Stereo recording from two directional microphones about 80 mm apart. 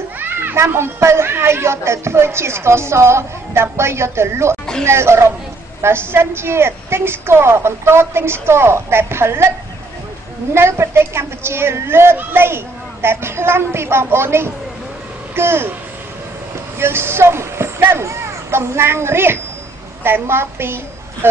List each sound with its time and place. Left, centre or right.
0.2 s a child's voice: right
10.5 s a child's voice: right
16.7 s a woman's voice: right